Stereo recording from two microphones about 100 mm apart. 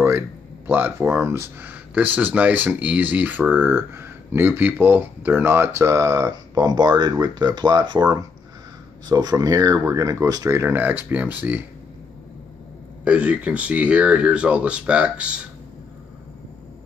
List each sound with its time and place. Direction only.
0.7 s speech: 20° right (ahead or behind)
13.0 s speech: 10° right (ahead or behind)